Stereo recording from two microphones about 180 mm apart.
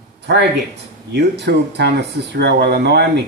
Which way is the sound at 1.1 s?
65° right (ahead or behind).